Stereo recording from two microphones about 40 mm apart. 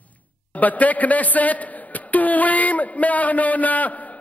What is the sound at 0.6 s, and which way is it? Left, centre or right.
A man's voice, left.